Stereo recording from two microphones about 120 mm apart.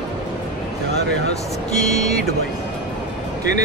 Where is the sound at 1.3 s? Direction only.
70° left (ahead or behind).